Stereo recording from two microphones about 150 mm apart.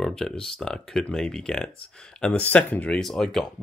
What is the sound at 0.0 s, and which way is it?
Speech, 5° left (ahead or behind).